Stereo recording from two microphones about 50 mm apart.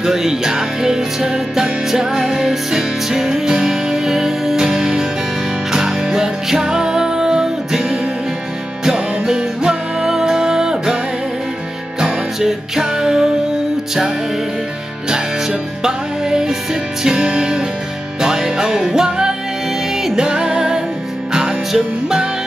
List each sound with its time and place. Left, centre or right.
0.0 s music: centre
12.0 s music: centre
15.0 s music: centre